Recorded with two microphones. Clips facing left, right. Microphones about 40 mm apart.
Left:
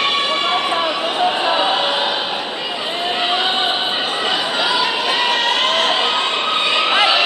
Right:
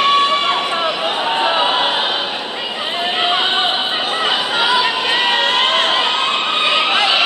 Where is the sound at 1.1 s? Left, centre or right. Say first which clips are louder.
Left 1 dB; centre.